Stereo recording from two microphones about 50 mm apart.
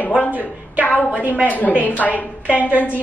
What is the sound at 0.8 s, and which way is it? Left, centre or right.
A woman's voice, left.